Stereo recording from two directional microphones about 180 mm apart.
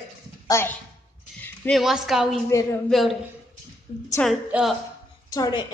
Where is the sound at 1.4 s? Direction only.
Centre (ahead or behind).